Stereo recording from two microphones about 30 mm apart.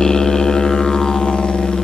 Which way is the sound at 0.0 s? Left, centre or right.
Centre.